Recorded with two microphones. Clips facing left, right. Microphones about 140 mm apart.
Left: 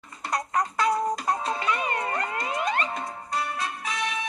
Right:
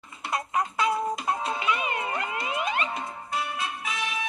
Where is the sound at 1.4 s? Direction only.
35° left (ahead or behind).